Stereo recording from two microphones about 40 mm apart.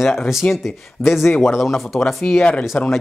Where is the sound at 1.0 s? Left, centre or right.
Left.